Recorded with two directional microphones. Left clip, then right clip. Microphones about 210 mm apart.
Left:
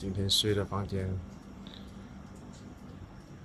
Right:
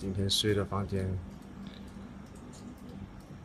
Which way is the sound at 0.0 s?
Centre (ahead or behind).